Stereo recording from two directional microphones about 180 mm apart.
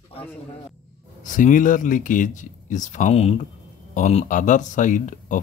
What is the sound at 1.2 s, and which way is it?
Speech, 45° left (ahead or behind).